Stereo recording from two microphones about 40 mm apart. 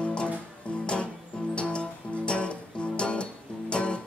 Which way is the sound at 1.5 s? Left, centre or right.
Left.